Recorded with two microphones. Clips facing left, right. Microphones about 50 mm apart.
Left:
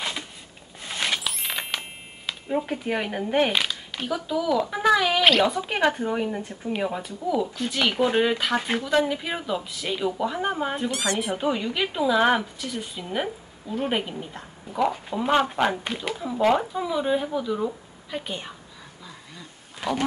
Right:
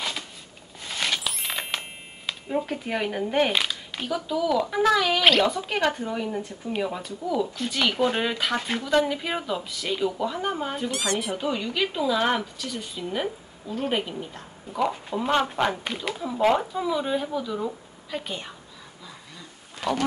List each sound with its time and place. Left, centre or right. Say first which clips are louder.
0.7 s a sound: left 1 dB; centre
2.6 s speech: left 1 dB; centre
5.7 s speech: left 2 dB; centre
10.9 s speech: left 1 dB; centre
11.3 s speech: left 1 dB; centre
19.3 s a sound: even; centre